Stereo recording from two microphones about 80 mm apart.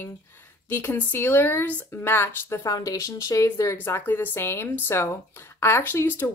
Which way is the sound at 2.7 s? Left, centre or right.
Left.